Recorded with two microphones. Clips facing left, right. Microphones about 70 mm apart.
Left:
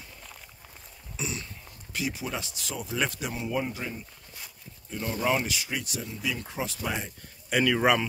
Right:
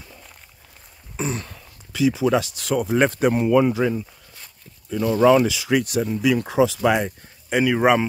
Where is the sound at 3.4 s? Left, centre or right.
Right.